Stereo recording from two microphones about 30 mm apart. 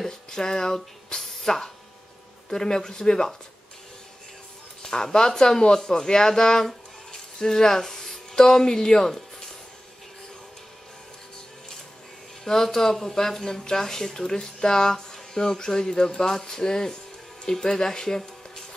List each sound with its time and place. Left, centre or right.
0.0 s a sound: centre
1.1 s music: centre
2.5 s speech: left
4.8 s speech: left
12.4 s speech: centre